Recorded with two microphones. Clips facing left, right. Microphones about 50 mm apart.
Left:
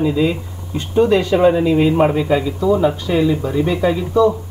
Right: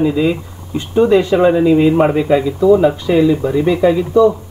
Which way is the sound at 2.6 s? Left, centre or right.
Centre.